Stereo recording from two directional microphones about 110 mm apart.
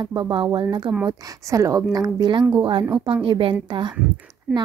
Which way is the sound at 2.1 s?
45° right (ahead or behind).